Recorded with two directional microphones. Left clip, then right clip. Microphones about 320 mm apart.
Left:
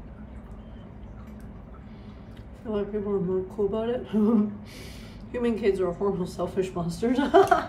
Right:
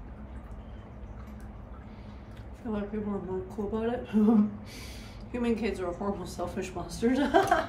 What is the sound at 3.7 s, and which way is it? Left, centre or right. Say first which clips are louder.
Speech: left 4 dB; centre.